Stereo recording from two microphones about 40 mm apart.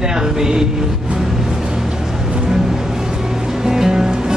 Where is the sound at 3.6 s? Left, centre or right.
Centre.